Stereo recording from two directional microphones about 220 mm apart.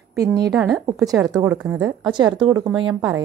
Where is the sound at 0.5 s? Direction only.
Centre (ahead or behind).